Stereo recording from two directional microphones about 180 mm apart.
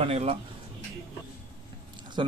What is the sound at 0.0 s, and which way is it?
Speech, 35° right (ahead or behind).